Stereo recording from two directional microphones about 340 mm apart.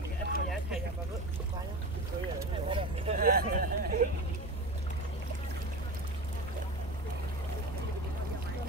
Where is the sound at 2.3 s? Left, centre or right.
Centre.